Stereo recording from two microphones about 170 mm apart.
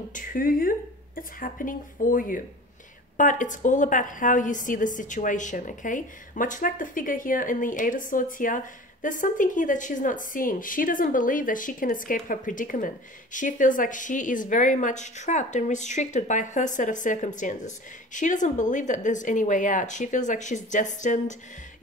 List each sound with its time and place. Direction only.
0.1 s a woman's voice: 50° left (ahead or behind)